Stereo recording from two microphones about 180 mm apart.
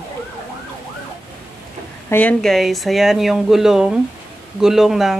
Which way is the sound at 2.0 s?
10° left (ahead or behind).